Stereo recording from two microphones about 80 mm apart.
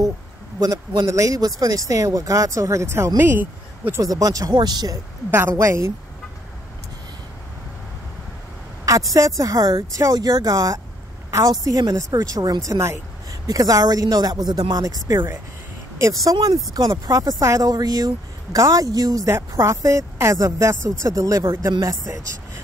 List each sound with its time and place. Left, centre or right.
0.6 s speech: right
3.2 s speech: right
4.0 s speech: right
4.6 s speech: right
5.3 s a woman's voice: right
8.8 s a woman's voice: right
16.3 s speech: right
17.0 s speech: right